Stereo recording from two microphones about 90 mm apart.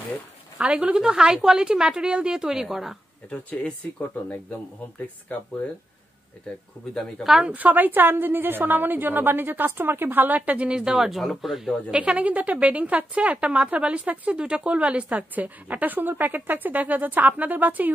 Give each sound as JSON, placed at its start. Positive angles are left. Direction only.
{"t": 0.6, "sound": "a woman's voice", "side_deg": -10}
{"t": 3.3, "sound": "speech", "side_deg": 15}
{"t": 6.9, "sound": "speech", "side_deg": 5}
{"t": 7.5, "sound": "a woman's voice", "side_deg": -20}
{"t": 12.0, "sound": "a woman's voice", "side_deg": -15}